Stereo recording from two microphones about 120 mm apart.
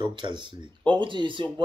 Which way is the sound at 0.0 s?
40° right (ahead or behind).